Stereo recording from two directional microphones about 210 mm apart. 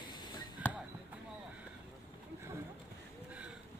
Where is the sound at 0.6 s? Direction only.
10° left (ahead or behind).